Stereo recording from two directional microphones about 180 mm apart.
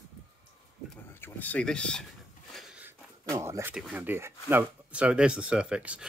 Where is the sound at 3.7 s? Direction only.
10° right (ahead or behind).